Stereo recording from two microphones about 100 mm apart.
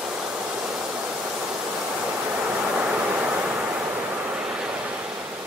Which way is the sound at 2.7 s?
15° right (ahead or behind).